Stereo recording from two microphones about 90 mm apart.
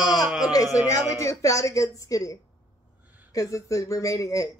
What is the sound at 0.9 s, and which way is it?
Speech, 35° left (ahead or behind).